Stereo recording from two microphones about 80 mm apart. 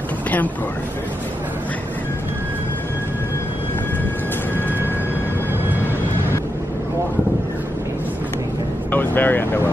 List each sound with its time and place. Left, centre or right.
8.9 s speech: left